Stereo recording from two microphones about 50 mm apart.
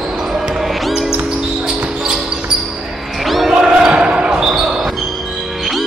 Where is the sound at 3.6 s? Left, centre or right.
Centre.